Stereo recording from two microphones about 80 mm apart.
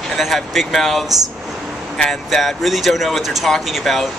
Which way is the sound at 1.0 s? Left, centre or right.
Right.